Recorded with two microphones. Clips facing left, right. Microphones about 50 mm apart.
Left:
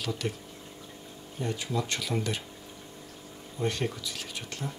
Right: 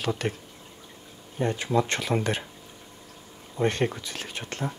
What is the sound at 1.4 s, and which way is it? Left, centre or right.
Speech, right.